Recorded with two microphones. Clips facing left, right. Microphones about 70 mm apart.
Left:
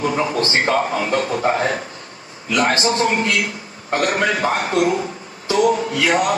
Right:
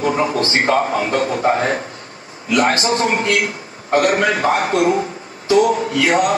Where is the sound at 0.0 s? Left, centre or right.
Right.